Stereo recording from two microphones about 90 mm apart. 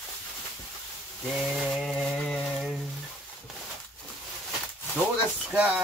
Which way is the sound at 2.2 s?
5° left (ahead or behind).